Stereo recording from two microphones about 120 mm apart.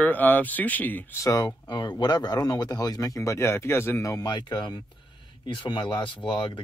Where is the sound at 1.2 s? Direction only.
30° left (ahead or behind).